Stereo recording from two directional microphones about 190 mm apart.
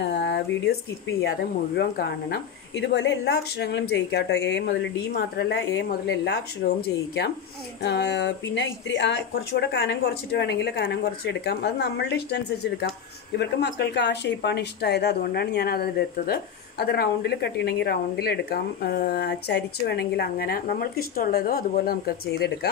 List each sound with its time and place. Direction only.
0.0 s a sound: 65° left (ahead or behind)
1.8 s speech: 55° left (ahead or behind)
6.6 s speech: 50° left (ahead or behind)
7.8 s speech: 65° left (ahead or behind)
13.4 s speech: 65° left (ahead or behind)